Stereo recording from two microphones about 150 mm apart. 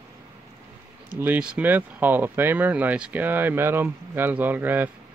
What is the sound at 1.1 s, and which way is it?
Speech, 10° right (ahead or behind).